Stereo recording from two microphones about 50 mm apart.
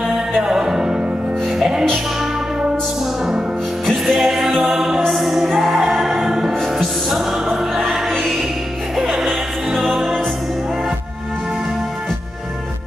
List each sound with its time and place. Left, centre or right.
0.0 s music: centre
3.8 s music: centre